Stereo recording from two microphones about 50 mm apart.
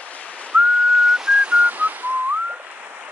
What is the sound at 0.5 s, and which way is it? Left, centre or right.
Whistling, centre.